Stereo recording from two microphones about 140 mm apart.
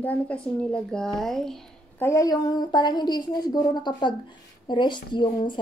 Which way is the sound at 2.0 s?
25° left (ahead or behind).